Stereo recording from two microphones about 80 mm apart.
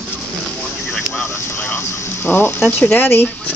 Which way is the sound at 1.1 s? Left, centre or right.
Left.